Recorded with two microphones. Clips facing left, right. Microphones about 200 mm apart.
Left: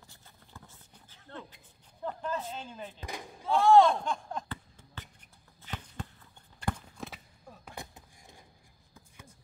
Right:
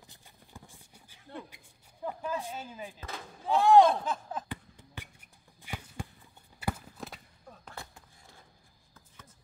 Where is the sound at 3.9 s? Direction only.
5° right (ahead or behind).